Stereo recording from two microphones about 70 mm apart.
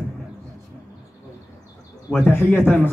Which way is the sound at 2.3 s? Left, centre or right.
Left.